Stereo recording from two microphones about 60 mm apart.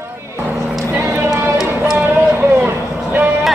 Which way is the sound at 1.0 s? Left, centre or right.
Right.